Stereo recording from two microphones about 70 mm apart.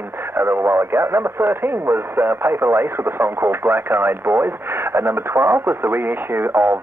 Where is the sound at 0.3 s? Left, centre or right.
Right.